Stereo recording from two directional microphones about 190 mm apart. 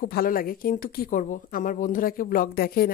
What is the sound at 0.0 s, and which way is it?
Speech, 50° left (ahead or behind).